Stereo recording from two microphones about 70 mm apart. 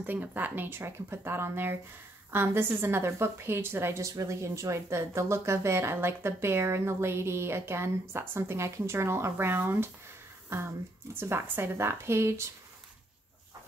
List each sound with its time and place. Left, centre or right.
0.0 s a woman's voice: right
11.1 s a woman's voice: right